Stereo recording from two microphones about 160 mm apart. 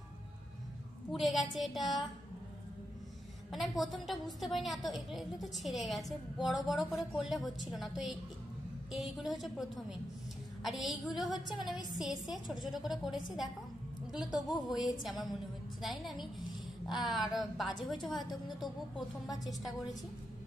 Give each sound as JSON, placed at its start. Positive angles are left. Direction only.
{"t": 1.1, "sound": "a woman's voice", "side_deg": 0}
{"t": 3.5, "sound": "a woman's voice", "side_deg": 0}
{"t": 11.4, "sound": "a woman's voice", "side_deg": 30}
{"t": 11.9, "sound": "a woman's voice", "side_deg": 0}
{"t": 14.5, "sound": "a woman's voice", "side_deg": 0}